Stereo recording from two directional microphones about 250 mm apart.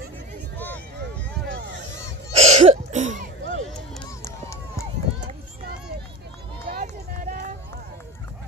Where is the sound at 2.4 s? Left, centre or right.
Right.